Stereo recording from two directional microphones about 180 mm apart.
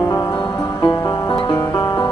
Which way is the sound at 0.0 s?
15° left (ahead or behind).